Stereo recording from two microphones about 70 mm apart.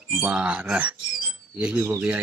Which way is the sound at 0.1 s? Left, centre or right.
Centre.